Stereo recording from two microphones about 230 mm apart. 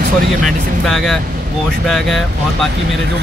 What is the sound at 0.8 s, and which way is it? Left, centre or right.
Speech, centre.